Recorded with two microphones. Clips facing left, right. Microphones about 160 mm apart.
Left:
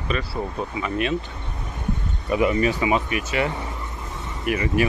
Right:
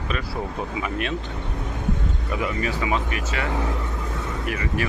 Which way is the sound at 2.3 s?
20° left (ahead or behind).